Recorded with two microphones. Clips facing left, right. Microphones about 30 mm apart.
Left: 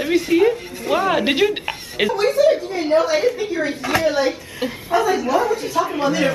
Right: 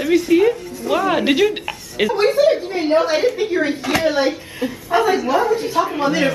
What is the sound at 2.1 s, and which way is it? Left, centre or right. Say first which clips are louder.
A woman's voice: right 1 dB; right.